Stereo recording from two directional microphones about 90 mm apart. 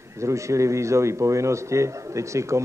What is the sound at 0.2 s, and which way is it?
A man's voice, 35° right (ahead or behind).